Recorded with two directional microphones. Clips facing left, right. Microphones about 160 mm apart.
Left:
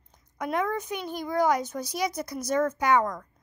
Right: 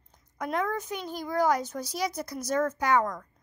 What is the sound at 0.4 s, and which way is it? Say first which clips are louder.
A woman's voice: left 2 dB; 10° left (ahead or behind).